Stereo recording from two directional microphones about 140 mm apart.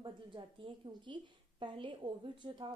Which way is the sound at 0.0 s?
35° right (ahead or behind).